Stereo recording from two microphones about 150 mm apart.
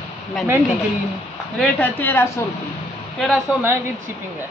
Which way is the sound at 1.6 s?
10° left (ahead or behind).